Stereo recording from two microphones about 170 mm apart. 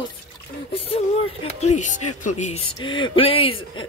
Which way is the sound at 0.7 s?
35° left (ahead or behind).